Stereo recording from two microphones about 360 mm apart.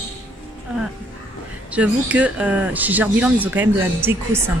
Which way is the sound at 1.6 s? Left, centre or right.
Centre.